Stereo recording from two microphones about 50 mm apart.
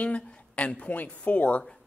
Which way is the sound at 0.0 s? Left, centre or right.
Left.